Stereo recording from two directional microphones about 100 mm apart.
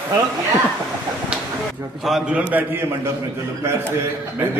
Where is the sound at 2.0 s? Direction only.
5° right (ahead or behind).